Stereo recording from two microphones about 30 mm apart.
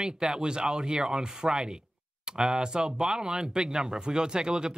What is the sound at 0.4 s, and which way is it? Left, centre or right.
Speech, right.